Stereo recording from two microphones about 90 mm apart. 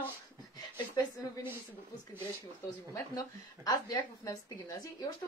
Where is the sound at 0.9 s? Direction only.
40° left (ahead or behind).